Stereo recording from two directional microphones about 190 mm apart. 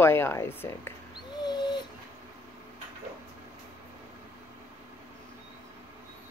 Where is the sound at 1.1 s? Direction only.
25° left (ahead or behind).